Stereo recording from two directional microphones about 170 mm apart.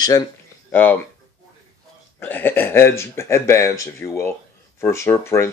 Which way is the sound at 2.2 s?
10° left (ahead or behind).